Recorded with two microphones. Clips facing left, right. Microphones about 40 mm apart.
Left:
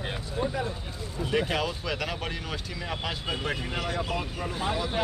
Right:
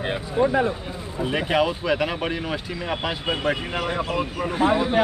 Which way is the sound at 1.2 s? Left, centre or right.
Right.